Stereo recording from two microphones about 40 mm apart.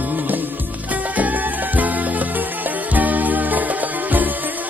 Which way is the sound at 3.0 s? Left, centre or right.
Right.